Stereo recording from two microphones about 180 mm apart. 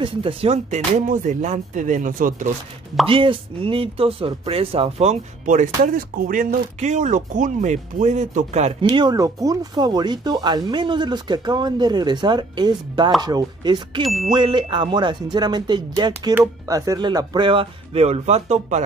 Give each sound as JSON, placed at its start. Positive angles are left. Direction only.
{"t": 0.0, "sound": "speech", "side_deg": -30}
{"t": 3.1, "sound": "speech", "side_deg": -30}
{"t": 8.9, "sound": "speech", "side_deg": -20}
{"t": 14.0, "sound": "music", "side_deg": 0}
{"t": 14.3, "sound": "speech", "side_deg": -25}